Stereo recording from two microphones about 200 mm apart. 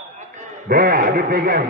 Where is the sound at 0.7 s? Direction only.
50° right (ahead or behind).